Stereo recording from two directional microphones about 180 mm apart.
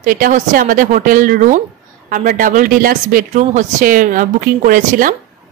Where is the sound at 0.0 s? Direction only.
50° right (ahead or behind).